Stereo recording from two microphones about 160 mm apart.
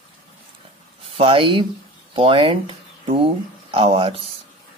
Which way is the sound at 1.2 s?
35° right (ahead or behind).